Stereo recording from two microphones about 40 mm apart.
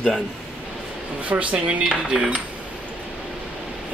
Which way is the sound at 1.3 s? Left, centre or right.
Right.